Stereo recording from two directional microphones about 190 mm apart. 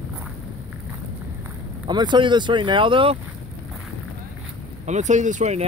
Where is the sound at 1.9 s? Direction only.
25° right (ahead or behind).